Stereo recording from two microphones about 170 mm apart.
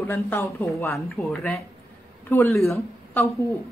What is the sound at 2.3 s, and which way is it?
Speech, 15° left (ahead or behind).